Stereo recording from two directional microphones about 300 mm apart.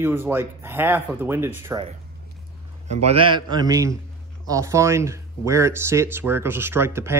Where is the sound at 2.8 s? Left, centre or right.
Right.